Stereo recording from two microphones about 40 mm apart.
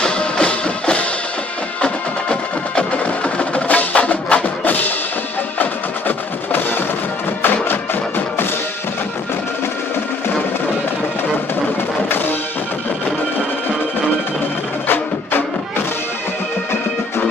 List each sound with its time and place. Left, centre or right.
0.0 s music: left
5.6 s music: left